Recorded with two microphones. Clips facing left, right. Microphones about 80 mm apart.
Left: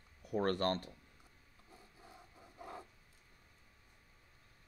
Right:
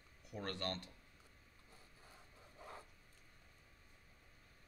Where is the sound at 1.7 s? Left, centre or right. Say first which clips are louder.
Left 6 dB; centre.